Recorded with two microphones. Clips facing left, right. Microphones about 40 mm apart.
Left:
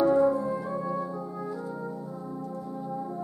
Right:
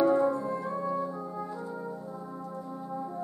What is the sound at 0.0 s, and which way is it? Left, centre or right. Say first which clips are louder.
Brass instrument: left 2 dB; centre.